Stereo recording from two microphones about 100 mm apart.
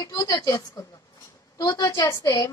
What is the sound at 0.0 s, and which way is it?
A woman's voice, 40° left (ahead or behind).